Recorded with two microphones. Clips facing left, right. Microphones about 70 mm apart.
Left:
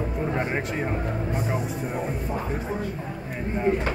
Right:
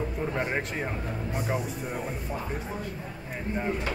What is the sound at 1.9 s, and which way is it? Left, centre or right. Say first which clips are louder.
Speech: left 5 dB; centre.